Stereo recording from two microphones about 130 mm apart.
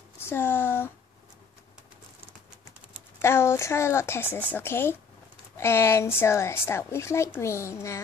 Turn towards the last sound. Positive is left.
turn(degrees=20)  # may be behind; listen again after turning